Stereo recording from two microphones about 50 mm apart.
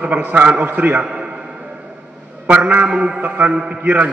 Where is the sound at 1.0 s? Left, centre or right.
Right.